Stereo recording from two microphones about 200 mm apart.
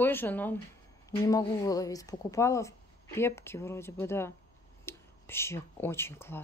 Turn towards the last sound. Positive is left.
turn(degrees=10)  # may be behind; listen again after turning